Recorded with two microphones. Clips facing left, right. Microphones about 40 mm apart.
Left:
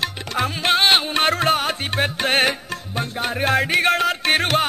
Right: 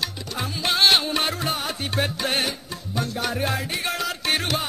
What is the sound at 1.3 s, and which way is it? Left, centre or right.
Music, left.